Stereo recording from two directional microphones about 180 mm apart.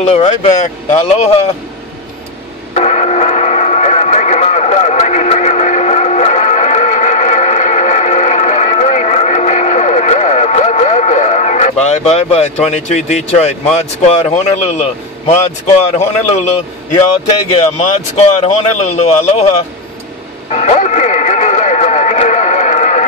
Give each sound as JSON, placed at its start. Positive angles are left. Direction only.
{"t": 0.0, "sound": "speech", "side_deg": 35}
{"t": 2.7, "sound": "radio", "side_deg": 40}
{"t": 11.8, "sound": "speech", "side_deg": 35}
{"t": 17.7, "sound": "speech", "side_deg": 35}
{"t": 20.5, "sound": "music", "side_deg": 35}